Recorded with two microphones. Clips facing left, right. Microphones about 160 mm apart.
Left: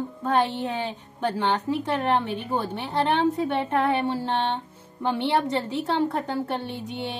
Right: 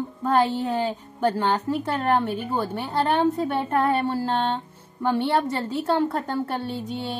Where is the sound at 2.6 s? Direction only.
5° right (ahead or behind).